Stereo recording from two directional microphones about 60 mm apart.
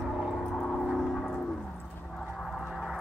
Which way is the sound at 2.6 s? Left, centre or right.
Centre.